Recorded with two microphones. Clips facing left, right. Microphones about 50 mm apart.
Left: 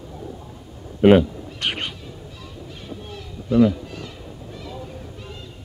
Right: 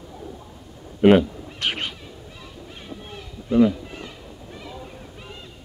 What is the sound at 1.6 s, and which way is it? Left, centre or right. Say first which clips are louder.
Cat: even; centre.